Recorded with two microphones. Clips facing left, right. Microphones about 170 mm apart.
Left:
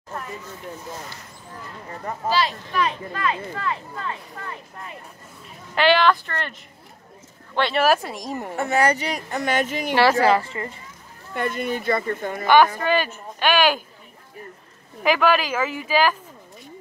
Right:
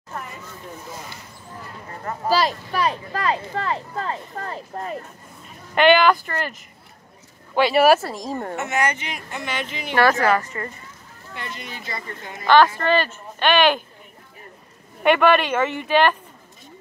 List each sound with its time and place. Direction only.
2.2 s speech: 40° right (ahead or behind)
5.8 s a woman's voice: centre (ahead or behind)
8.5 s speech: 35° left (ahead or behind)
10.2 s speech: 30° left (ahead or behind)
11.3 s speech: 50° left (ahead or behind)
12.4 s speech: 10° left (ahead or behind)
15.0 s a woman's voice: centre (ahead or behind)